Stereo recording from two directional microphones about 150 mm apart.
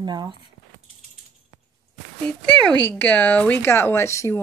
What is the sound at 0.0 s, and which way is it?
Speech, 30° right (ahead or behind).